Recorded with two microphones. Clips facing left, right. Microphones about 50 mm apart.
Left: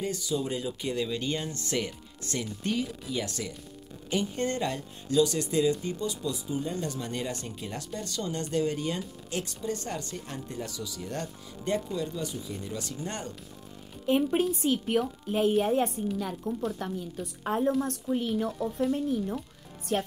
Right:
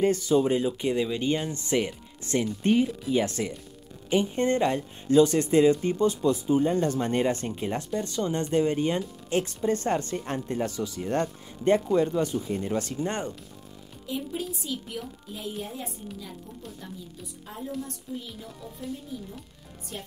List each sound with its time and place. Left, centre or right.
0.0 s speech: right
14.0 s a woman's voice: left
15.5 s a woman's voice: left